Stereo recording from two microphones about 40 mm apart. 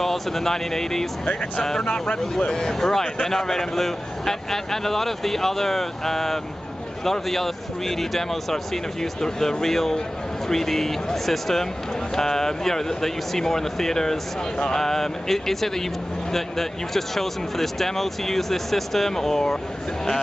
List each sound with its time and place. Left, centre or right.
0.0 s speech: centre